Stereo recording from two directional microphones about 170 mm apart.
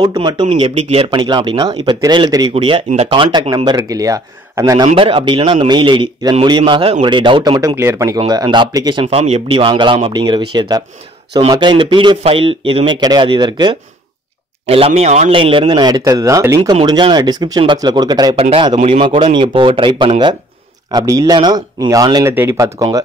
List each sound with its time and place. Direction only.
0.0 s speech: 25° right (ahead or behind)
4.8 s speech: 30° right (ahead or behind)
9.0 s speech: 40° right (ahead or behind)
14.7 s speech: 35° right (ahead or behind); by 23.0 s 20° right (ahead or behind)